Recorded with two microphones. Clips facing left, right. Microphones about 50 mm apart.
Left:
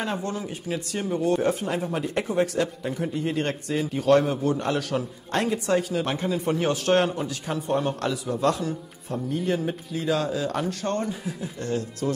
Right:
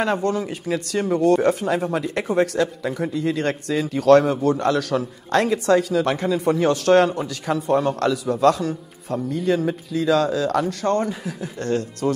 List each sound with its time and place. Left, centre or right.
0.0 s speech: right
0.5 s speech: right
1.0 s speech: right
10.8 s speech: right
11.1 s speech: right